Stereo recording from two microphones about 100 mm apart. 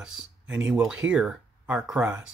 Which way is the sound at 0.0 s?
15° right (ahead or behind).